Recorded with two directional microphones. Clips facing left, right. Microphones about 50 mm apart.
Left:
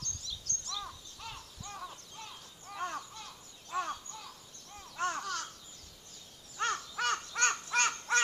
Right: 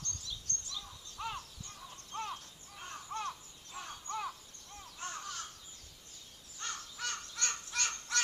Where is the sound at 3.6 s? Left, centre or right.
Left.